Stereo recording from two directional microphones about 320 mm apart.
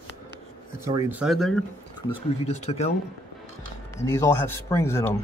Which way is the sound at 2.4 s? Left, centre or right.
Left.